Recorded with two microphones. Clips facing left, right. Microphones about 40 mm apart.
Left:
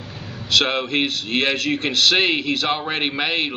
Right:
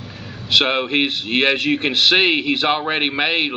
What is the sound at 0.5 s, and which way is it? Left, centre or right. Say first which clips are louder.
A man's voice: right 2 dB; centre.